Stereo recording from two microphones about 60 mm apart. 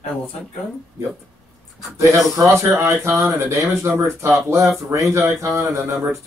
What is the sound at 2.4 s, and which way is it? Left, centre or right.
Speech, right.